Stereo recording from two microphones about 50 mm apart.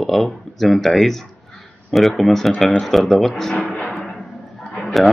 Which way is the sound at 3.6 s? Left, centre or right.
Centre.